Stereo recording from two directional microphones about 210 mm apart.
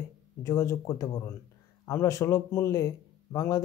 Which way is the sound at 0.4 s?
15° left (ahead or behind).